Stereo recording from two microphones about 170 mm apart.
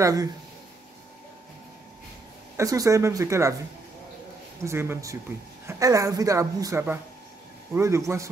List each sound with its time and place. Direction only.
0.0 s speech: 20° right (ahead or behind)
2.5 s speech: 20° right (ahead or behind)
4.6 s a man's voice: 15° right (ahead or behind)